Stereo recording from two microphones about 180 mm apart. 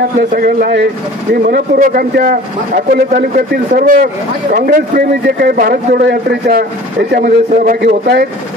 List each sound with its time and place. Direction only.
0.3 s a man's voice: 55° right (ahead or behind)
7.1 s a man's voice: 55° right (ahead or behind)